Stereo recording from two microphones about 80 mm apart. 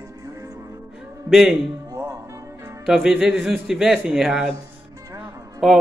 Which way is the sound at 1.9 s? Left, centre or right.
Right.